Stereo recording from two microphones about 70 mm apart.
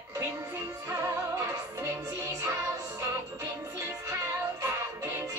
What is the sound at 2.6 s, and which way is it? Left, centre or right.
Music, right.